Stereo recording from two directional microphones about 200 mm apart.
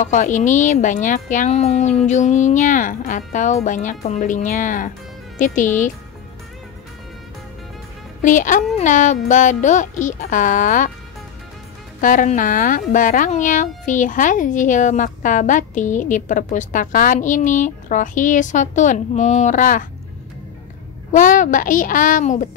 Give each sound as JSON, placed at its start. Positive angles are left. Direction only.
{"t": 0.0, "sound": "speech", "side_deg": 40}
{"t": 8.2, "sound": "speech", "side_deg": 40}
{"t": 12.0, "sound": "speech", "side_deg": 40}
{"t": 21.1, "sound": "speech", "side_deg": 40}